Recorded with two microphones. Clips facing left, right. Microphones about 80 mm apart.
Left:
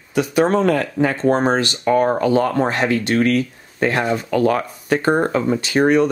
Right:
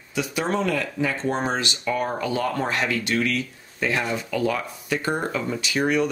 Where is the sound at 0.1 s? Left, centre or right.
Left.